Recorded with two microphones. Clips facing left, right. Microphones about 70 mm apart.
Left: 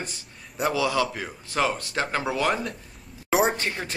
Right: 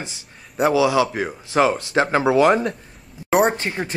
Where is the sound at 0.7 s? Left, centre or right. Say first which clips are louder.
Right 7 dB; centre.